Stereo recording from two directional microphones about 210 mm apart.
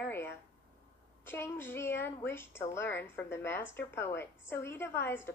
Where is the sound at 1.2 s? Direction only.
10° left (ahead or behind).